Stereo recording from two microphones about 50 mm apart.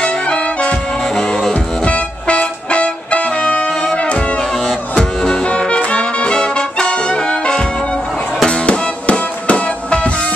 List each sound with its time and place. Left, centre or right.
0.0 s music: left
1.0 s music: centre